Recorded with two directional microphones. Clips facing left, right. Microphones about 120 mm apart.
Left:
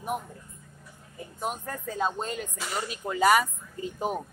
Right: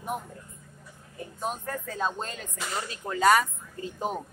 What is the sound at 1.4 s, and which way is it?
A woman's voice, 15° left (ahead or behind).